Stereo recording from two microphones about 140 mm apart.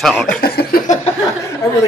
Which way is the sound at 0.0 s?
5° left (ahead or behind).